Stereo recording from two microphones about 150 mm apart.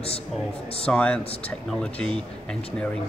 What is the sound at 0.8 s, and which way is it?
Speech, 10° left (ahead or behind).